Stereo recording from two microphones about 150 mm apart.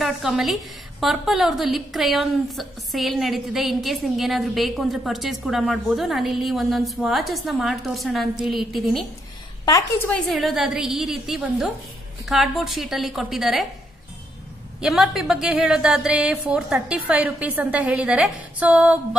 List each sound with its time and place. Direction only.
0.0 s a woman's voice: centre (ahead or behind)
9.7 s a woman's voice: 25° left (ahead or behind)
10.0 s a woman's voice: 5° left (ahead or behind)
14.8 s a woman's voice: 5° right (ahead or behind)